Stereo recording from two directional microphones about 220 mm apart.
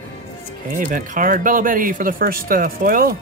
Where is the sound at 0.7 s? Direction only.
35° right (ahead or behind).